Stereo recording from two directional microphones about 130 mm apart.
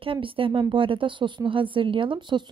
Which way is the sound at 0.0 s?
45° right (ahead or behind).